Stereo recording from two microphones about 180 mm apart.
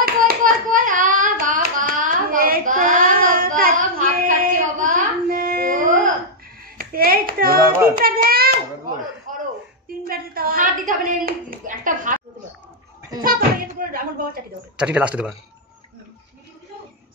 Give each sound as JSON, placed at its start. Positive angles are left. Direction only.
{"t": 0.0, "sound": "hands", "side_deg": -50}
{"t": 4.0, "sound": "a sound", "side_deg": -50}
{"t": 6.6, "sound": "hands", "side_deg": -55}
{"t": 10.0, "sound": "hands", "side_deg": -55}
{"t": 13.2, "sound": "speech", "side_deg": -50}
{"t": 14.8, "sound": "speech", "side_deg": -5}